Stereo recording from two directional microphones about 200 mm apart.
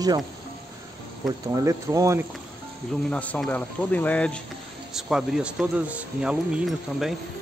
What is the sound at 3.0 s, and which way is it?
Speech, 5° left (ahead or behind).